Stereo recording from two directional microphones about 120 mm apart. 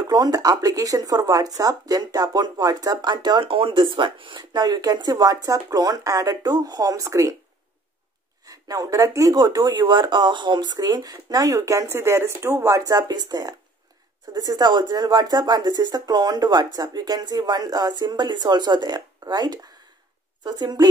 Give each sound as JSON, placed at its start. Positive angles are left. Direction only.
{"t": 0.1, "sound": "speech", "side_deg": -30}
{"t": 8.5, "sound": "speech", "side_deg": -30}